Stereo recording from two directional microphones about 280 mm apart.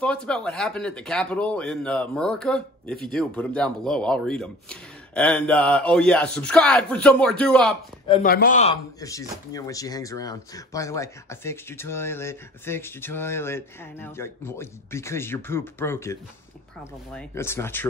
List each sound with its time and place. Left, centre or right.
0.0 s speech: centre
8.1 s speech: left
9.0 s speech: centre